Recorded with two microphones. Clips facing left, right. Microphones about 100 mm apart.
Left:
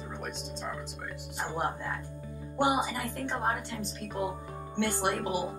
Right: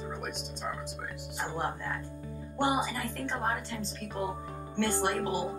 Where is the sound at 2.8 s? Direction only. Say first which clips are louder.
Left 1 dB; 15° left (ahead or behind).